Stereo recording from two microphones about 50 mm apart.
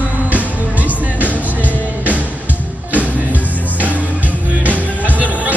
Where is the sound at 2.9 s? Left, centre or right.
Right.